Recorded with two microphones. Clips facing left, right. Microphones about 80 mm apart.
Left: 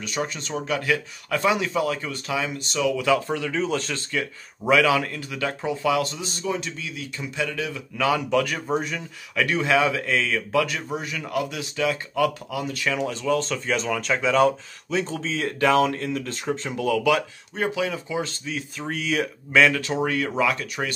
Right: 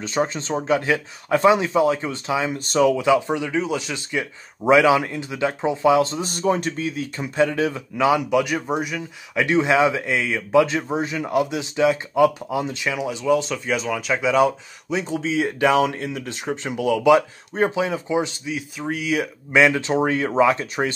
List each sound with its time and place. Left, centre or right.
0.0 s a man's voice: right
2.7 s speech: right
3.0 s a man's voice: centre
6.2 s a man's voice: right
8.0 s speech: centre
9.3 s a man's voice: right
12.9 s speech: centre
19.6 s a man's voice: right